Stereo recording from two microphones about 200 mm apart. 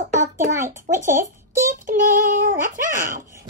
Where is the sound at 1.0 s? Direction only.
40° right (ahead or behind).